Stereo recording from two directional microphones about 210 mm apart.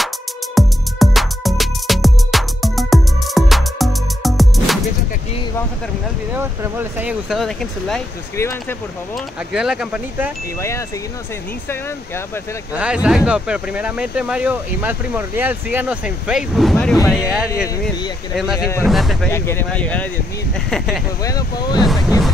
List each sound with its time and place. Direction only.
0.6 s music: centre (ahead or behind)
6.3 s speech: 10° right (ahead or behind)
8.4 s speech: 10° left (ahead or behind)
9.5 s speech: 5° right (ahead or behind)
12.7 s speech: 5° right (ahead or behind)
18.6 s speech: 15° left (ahead or behind)
18.9 s speech: centre (ahead or behind)
19.3 s speech: 10° left (ahead or behind)
21.2 s speech: 15° left (ahead or behind)